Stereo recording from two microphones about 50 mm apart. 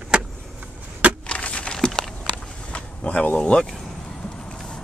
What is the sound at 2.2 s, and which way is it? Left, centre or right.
Vehicle, left.